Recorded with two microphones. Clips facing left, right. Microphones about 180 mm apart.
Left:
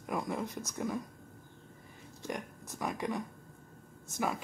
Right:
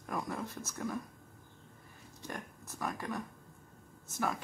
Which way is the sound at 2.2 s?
15° left (ahead or behind).